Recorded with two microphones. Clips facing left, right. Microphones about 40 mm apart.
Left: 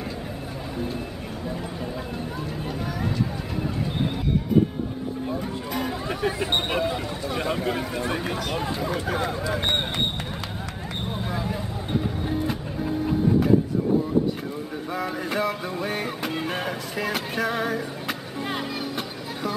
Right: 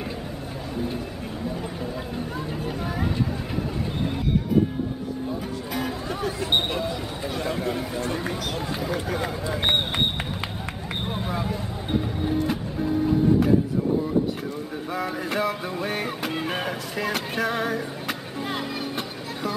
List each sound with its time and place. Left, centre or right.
5.7 s music: centre
6.0 s a sound: left
7.4 s speech: centre
8.8 s music: centre
11.2 s a sound: centre
12.3 s music: centre
15.0 s music: centre